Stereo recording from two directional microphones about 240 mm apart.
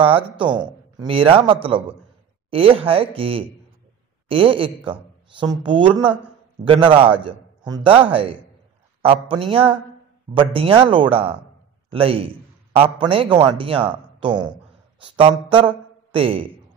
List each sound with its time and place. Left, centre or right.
0.0 s speech: right
7.2 s chopping: centre
9.1 s speech: right